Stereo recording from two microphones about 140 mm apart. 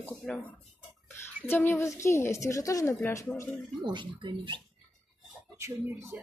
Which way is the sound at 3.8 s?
35° right (ahead or behind).